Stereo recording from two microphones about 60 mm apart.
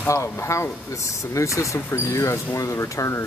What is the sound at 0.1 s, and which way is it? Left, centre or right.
Speech, left.